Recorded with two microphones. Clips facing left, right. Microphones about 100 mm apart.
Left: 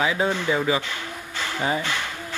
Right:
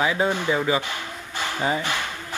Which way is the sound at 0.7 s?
20° right (ahead or behind).